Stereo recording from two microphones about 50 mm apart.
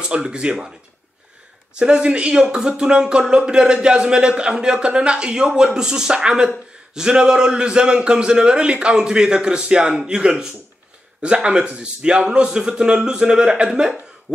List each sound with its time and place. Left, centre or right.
0.0 s a man's voice: centre
1.8 s a man's voice: centre